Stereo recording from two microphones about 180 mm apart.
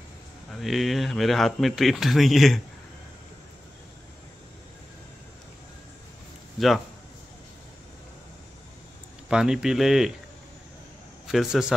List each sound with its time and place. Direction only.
0.5 s speech: centre (ahead or behind)
6.6 s speech: centre (ahead or behind)
9.3 s speech: 5° right (ahead or behind)
11.2 s a man's voice: centre (ahead or behind)